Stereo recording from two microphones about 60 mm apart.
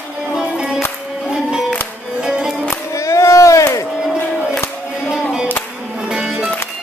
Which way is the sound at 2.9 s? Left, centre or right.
Left.